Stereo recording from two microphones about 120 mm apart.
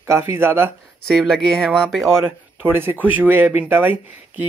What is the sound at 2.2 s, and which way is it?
Speech, 20° right (ahead or behind).